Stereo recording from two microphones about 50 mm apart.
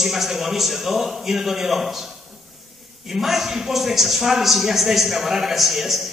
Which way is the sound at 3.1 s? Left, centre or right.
Centre.